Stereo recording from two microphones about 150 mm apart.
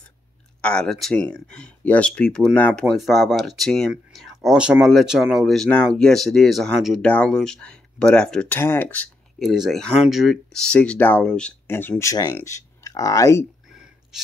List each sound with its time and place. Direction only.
0.6 s speech: 5° left (ahead or behind)
9.4 s speech: centre (ahead or behind); by 13.5 s 20° left (ahead or behind)
13.7 s a sound: 5° right (ahead or behind)